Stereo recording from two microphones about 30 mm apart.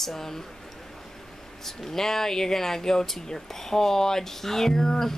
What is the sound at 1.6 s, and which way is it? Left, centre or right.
Speech, centre.